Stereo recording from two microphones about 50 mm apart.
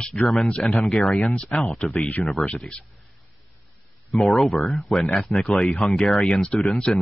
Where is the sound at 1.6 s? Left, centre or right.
Left.